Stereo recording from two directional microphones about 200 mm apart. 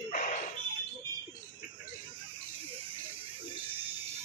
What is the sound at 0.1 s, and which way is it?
Fire alarm, 40° left (ahead or behind).